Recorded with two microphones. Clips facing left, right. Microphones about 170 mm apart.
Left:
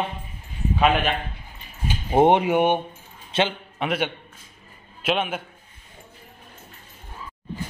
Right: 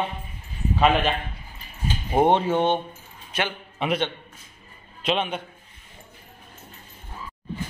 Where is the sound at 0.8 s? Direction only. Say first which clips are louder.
Even; centre (ahead or behind).